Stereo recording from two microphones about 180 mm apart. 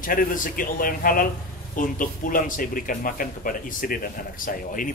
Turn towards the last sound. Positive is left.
turn(degrees=50)  # may be behind; listen again after turning